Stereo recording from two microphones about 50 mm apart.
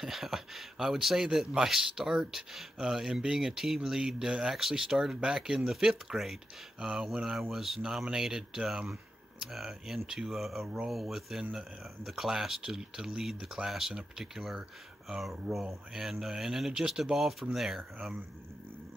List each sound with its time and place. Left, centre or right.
0.0 s speech: centre
6.8 s a sound: centre
7.2 s speech: centre